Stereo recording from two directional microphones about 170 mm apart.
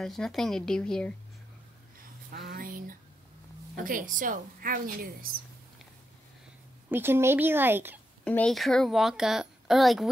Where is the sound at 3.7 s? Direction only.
55° right (ahead or behind).